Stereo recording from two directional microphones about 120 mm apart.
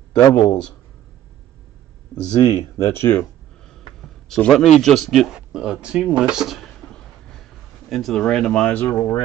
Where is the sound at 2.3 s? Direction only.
35° left (ahead or behind).